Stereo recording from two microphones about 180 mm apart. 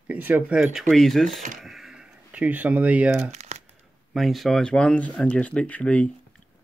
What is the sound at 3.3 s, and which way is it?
Crumpling, 40° right (ahead or behind).